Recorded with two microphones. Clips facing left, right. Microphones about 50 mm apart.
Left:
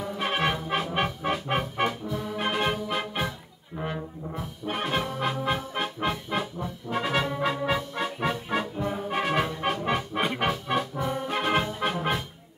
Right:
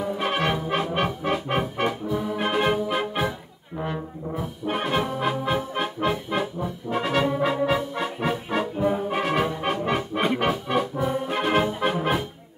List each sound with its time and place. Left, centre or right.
0.2 s music: centre